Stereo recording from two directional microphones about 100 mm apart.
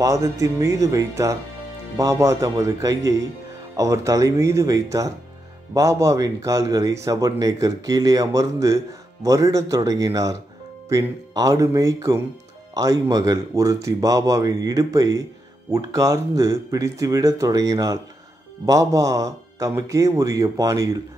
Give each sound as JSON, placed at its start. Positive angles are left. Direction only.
{"t": 0.0, "sound": "speech", "side_deg": -35}